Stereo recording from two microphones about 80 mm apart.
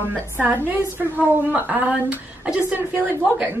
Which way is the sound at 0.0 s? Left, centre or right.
Right.